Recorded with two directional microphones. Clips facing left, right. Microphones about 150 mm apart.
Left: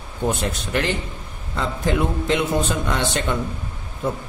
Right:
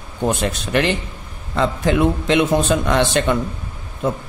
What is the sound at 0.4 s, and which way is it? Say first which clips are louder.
A man's voice: right 4 dB; 90° right.